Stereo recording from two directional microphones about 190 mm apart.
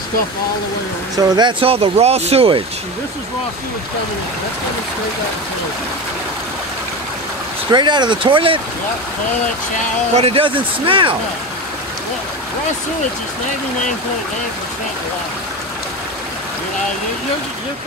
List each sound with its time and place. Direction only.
1.3 s speech: 25° right (ahead or behind)
7.7 s speech: 25° right (ahead or behind)
10.1 s speech: 30° right (ahead or behind)